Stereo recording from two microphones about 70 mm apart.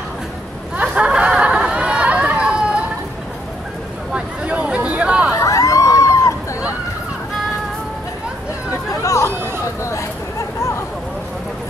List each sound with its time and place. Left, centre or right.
0.7 s chatter: centre
4.1 s a sound: centre
5.3 s emergency vehicle: left
9.0 s chatter: left